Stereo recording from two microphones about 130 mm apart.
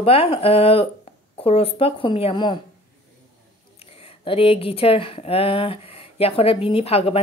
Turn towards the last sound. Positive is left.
turn(degrees=50)  # may be behind; listen again after turning